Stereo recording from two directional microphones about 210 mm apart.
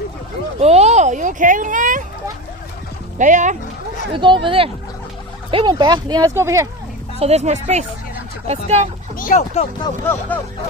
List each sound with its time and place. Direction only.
0.6 s speech: 30° right (ahead or behind)
3.2 s speech: 35° right (ahead or behind)
4.1 s speech: 25° right (ahead or behind)
7.2 s speech: 30° right (ahead or behind)
9.1 s speech: 40° left (ahead or behind)